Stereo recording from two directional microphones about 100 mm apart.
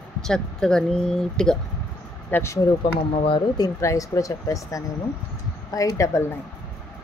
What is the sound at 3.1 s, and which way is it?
Speech, 75° left (ahead or behind).